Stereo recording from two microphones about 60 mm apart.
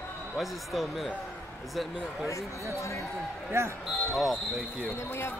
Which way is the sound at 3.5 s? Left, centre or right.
Right.